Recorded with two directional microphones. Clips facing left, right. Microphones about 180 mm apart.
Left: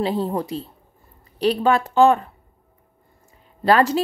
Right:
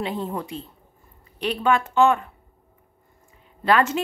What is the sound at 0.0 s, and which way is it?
Speech, 35° left (ahead or behind).